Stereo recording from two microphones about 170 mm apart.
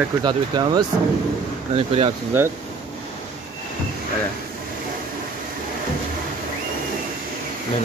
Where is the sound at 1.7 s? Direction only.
35° right (ahead or behind).